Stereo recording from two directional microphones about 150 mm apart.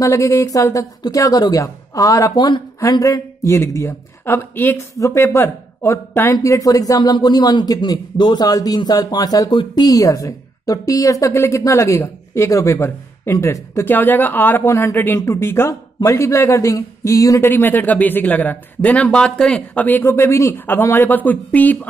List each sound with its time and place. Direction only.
0.0 s speech: 20° left (ahead or behind)